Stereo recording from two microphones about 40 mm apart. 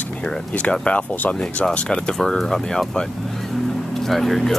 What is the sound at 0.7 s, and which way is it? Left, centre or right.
Speech, left.